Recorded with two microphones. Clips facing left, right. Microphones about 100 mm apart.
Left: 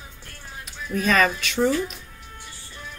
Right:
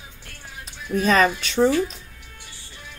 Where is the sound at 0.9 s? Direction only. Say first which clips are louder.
Right 2 dB; 35° right (ahead or behind).